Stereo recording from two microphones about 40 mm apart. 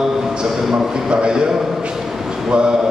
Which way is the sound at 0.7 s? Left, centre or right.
Right.